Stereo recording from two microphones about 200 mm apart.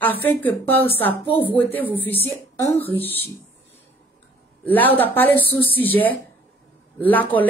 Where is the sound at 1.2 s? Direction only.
25° left (ahead or behind).